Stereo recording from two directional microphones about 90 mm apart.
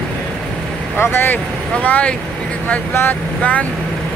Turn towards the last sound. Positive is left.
turn(degrees=15)  # may be behind; listen again after turning